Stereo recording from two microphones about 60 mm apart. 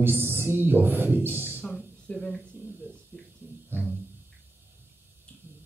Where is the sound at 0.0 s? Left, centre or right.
Right.